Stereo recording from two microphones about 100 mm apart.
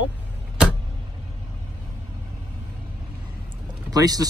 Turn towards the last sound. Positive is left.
turn(degrees=-40)  # may be behind; listen again after turning